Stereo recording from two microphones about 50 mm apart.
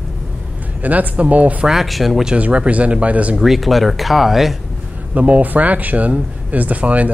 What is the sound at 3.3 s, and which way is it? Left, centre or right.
Speech, centre.